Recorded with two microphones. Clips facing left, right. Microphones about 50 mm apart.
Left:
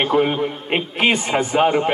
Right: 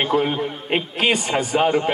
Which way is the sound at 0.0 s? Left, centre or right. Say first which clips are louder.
Left 2 dB; left.